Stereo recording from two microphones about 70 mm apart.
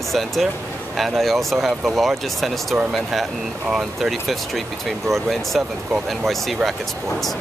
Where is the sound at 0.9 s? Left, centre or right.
Centre.